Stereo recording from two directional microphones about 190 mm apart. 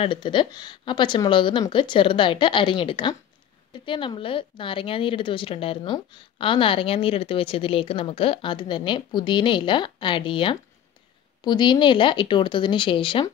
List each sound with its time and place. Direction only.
0.0 s a woman's voice: 25° left (ahead or behind)